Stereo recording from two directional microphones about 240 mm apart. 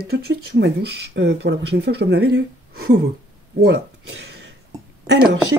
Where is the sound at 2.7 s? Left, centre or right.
Right.